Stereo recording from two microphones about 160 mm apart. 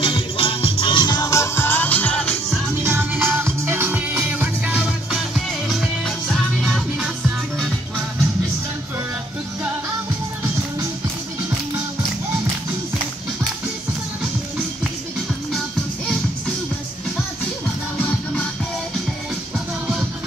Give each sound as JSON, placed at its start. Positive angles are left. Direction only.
{"t": 0.0, "sound": "music", "side_deg": 35}
{"t": 2.8, "sound": "music", "side_deg": -15}